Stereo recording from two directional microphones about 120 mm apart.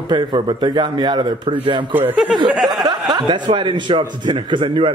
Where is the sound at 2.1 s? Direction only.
5° right (ahead or behind).